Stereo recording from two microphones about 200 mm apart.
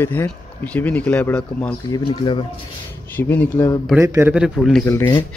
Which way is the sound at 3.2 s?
10° left (ahead or behind).